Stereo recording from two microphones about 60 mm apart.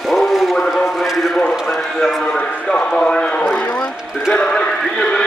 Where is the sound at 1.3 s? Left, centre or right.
Centre.